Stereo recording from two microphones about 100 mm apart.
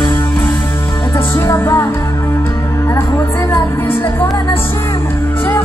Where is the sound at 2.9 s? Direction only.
30° left (ahead or behind).